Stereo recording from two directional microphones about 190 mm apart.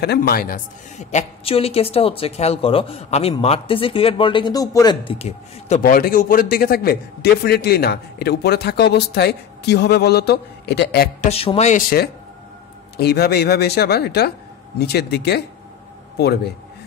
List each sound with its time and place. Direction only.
0.0 s a woman's voice: 55° left (ahead or behind); by 5.1 s 20° left (ahead or behind)
5.8 s a man's voice: 50° left (ahead or behind)
11.1 s a woman's voice: 35° left (ahead or behind)
12.9 s a man's voice: 55° left (ahead or behind)